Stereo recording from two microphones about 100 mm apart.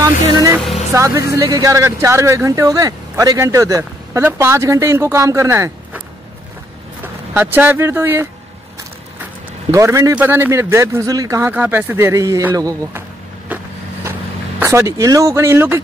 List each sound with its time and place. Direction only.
0.0 s speech: 35° right (ahead or behind)
7.0 s speech: 20° right (ahead or behind)
9.7 s speech: 30° right (ahead or behind)
10.1 s speech: 20° right (ahead or behind)
11.5 s speech: 15° right (ahead or behind)
12.1 s speech: 35° right (ahead or behind)
14.6 s speech: 30° right (ahead or behind)